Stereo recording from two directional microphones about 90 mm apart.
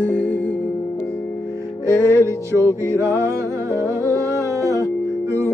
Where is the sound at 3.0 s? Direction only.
35° right (ahead or behind).